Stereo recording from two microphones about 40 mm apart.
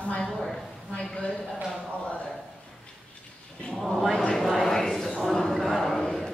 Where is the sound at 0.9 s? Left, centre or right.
Centre.